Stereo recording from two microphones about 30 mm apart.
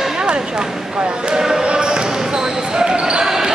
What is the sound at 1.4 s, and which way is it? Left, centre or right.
Basketball bounce, centre.